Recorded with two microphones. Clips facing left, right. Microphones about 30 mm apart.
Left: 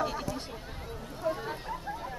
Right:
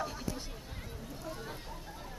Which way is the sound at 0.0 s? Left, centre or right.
Left.